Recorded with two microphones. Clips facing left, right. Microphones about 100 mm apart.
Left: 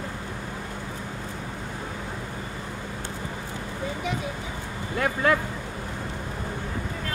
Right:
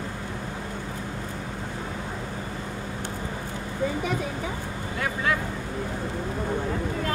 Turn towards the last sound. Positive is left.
turn(degrees=55)  # may be behind; listen again after turning